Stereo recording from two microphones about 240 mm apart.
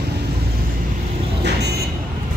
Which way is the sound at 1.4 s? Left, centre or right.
Right.